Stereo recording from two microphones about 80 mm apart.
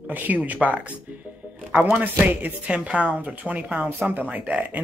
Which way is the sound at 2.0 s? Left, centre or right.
Right.